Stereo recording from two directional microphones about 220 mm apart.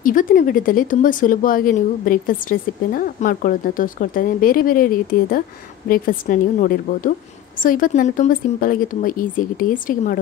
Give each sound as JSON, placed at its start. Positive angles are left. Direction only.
{"t": 0.0, "sound": "speech", "side_deg": 40}